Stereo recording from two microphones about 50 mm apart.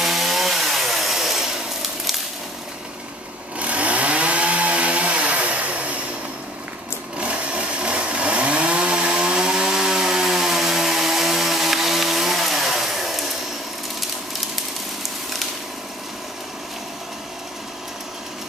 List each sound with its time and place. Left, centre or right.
0.0 s chainsaw: centre
3.5 s chainsaw: right
7.2 s chainsaw: right; by 13.3 s centre